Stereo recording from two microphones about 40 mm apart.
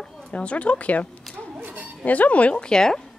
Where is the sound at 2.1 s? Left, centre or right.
Left.